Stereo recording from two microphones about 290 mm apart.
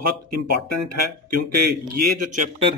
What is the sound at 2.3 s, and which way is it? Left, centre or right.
Speech, right.